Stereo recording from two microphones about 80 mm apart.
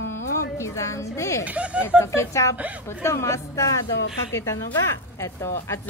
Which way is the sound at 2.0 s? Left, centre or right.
Left.